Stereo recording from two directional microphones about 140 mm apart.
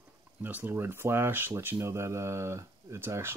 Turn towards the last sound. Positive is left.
turn(degrees=-15)  # may be behind; listen again after turning